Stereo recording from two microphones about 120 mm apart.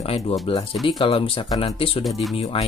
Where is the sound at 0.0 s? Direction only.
55° left (ahead or behind).